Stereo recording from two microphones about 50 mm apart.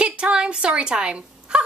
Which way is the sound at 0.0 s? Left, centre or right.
Right.